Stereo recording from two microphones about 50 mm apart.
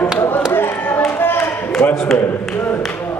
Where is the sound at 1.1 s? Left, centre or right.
Left.